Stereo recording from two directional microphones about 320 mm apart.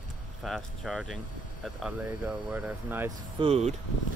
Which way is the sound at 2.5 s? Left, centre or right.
Centre.